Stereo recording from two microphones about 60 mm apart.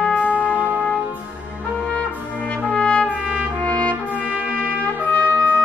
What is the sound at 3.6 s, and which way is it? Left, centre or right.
Brass instrument, left.